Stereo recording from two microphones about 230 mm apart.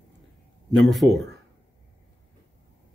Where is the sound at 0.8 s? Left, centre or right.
Centre.